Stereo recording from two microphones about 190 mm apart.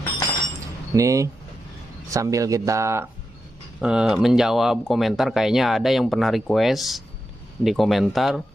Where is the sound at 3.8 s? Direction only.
5° right (ahead or behind).